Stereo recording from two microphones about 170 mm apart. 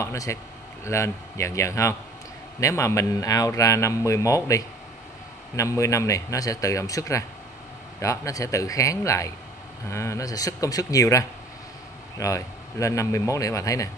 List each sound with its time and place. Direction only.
0.0 s a man's voice: 15° left (ahead or behind)